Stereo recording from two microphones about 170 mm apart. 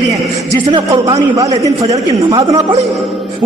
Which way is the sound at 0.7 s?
20° right (ahead or behind).